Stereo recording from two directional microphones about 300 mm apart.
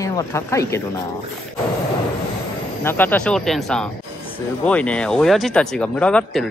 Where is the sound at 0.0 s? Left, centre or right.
Centre.